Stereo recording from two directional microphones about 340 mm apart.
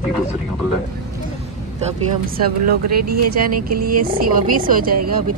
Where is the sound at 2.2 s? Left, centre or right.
Right.